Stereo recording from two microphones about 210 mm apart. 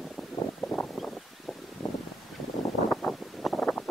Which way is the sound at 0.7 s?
5° left (ahead or behind).